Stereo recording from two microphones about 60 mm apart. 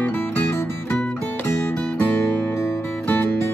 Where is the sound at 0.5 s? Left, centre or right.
Left.